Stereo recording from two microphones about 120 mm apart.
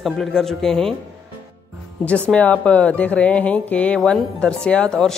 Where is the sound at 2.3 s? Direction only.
10° left (ahead or behind).